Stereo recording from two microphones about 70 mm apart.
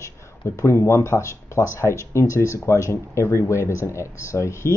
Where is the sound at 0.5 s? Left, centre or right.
Left.